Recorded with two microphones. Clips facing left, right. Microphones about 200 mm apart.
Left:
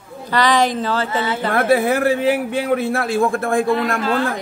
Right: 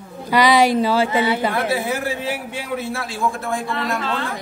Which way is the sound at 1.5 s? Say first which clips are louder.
Left 6 dB; 55° left (ahead or behind).